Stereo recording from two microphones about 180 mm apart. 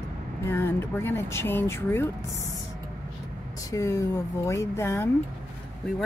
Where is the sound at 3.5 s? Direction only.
15° left (ahead or behind).